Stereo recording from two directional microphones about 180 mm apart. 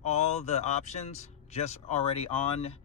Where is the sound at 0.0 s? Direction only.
40° left (ahead or behind).